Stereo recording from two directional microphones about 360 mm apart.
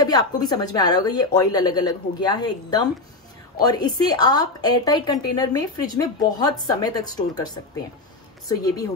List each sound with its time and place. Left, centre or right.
0.0 s a woman's voice: centre